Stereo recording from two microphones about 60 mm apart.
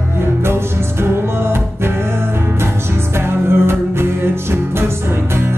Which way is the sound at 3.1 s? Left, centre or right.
Right.